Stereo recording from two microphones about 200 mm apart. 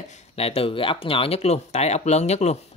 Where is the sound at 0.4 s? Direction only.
30° left (ahead or behind).